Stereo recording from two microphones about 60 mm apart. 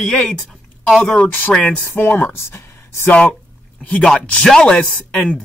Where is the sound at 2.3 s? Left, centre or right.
Left.